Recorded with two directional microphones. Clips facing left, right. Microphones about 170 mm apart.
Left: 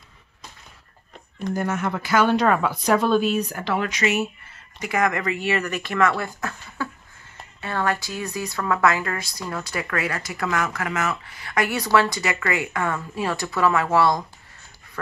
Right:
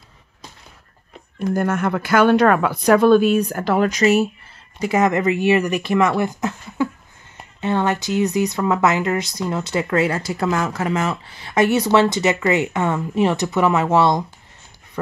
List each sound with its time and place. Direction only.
1.5 s speech: 55° right (ahead or behind); by 4.3 s 35° right (ahead or behind)
4.7 s speech: 25° right (ahead or behind)